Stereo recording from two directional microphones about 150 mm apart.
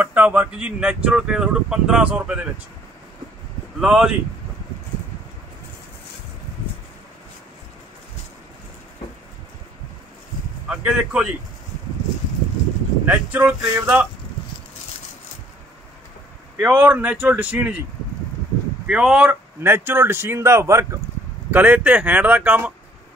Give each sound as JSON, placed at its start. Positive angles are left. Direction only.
{"t": 0.0, "sound": "speech", "side_deg": -10}
{"t": 3.8, "sound": "speech", "side_deg": 0}
{"t": 10.7, "sound": "speech", "side_deg": -5}
{"t": 13.0, "sound": "speech", "side_deg": -10}
{"t": 16.5, "sound": "speech", "side_deg": -10}
{"t": 18.9, "sound": "speech", "side_deg": -5}